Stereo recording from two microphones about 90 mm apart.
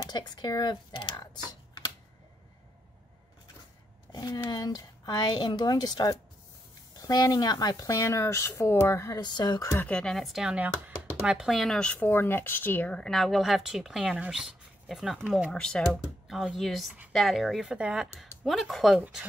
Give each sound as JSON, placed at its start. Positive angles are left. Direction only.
{"t": 0.0, "sound": "speech", "side_deg": 55}
{"t": 4.1, "sound": "a woman's voice", "side_deg": 50}
{"t": 9.2, "sound": "a woman's voice", "side_deg": 50}
{"t": 9.8, "sound": "speech", "side_deg": 10}
{"t": 11.8, "sound": "speech", "side_deg": 20}
{"t": 15.2, "sound": "speech", "side_deg": -10}
{"t": 15.5, "sound": "speech", "side_deg": 10}
{"t": 18.4, "sound": "speech", "side_deg": 0}